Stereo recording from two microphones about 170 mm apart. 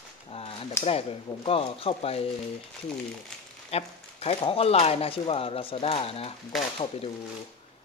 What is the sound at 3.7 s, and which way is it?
Speech, 35° left (ahead or behind).